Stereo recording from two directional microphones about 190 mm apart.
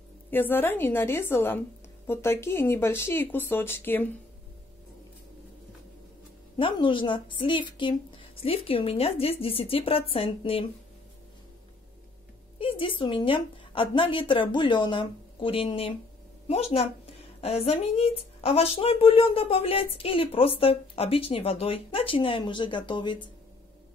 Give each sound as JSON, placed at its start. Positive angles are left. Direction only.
{"t": 0.3, "sound": "speech", "side_deg": 10}
{"t": 6.5, "sound": "a woman's voice", "side_deg": 25}
{"t": 12.5, "sound": "a woman's voice", "side_deg": 30}